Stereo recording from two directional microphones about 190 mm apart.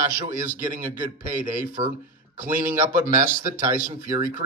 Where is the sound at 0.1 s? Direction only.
40° right (ahead or behind).